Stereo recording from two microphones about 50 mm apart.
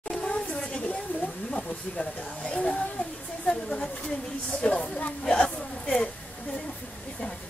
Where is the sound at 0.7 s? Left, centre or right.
Left.